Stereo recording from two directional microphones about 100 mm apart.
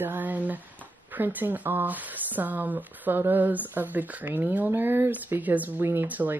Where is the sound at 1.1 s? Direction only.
20° right (ahead or behind).